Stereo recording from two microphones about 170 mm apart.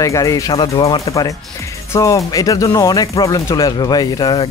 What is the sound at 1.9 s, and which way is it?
A man's voice, 20° left (ahead or behind).